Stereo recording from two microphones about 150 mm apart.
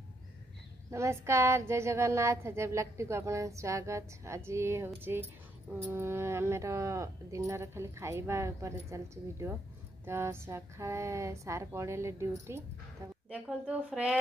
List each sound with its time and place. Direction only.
0.9 s speech: 20° right (ahead or behind)
13.3 s a woman's voice: 10° right (ahead or behind)